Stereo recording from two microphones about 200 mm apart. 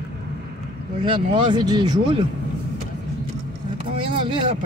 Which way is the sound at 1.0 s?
25° right (ahead or behind).